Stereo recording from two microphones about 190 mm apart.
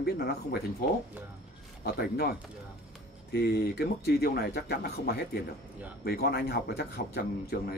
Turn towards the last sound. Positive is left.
turn(degrees=55)  # may be behind; listen again after turning